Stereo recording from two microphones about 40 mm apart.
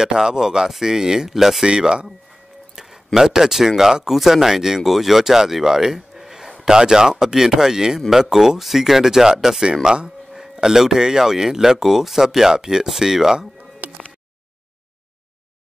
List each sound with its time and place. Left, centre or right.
0.0 s speech: centre
1.7 s speech: right
2.7 s a sound: centre
3.2 s speech: centre
13.8 s music: right